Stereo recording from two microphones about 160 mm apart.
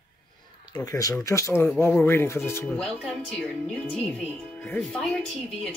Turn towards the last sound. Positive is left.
turn(degrees=5)  # may be behind; listen again after turning